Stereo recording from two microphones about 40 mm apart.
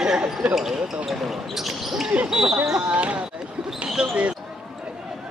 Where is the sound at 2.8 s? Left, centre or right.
Right.